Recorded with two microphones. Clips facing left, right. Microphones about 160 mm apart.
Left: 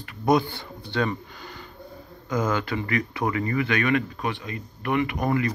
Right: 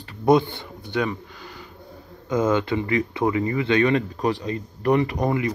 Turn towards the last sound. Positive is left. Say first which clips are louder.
# right 1 dB
turn(degrees=-20)  # may be behind; listen again after turning